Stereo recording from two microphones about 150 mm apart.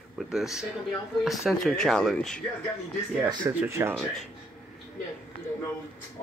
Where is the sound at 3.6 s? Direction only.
15° right (ahead or behind).